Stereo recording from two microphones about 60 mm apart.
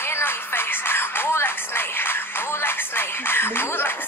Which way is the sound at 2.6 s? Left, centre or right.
Left.